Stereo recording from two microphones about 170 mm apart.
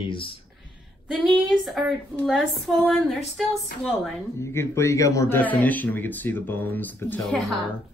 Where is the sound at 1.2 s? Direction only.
Centre (ahead or behind).